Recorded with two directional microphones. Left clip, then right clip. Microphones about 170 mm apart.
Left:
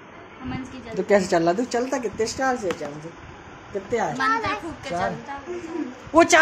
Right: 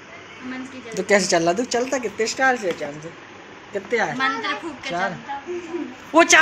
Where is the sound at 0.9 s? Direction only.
10° left (ahead or behind).